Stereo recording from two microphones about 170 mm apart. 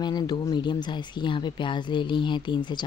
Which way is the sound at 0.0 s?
25° left (ahead or behind).